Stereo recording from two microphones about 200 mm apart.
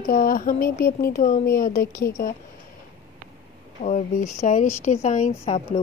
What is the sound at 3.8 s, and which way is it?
Speech, 35° left (ahead or behind).